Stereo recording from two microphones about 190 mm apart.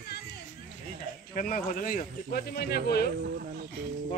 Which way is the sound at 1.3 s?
45° left (ahead or behind).